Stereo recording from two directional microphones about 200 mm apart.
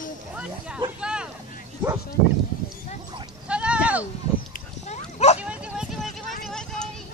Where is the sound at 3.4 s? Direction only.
5° right (ahead or behind).